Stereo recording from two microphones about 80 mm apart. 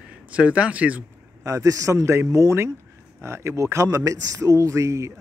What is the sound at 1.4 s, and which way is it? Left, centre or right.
Speech, right.